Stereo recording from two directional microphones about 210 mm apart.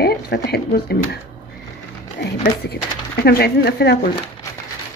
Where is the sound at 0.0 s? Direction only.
50° left (ahead or behind).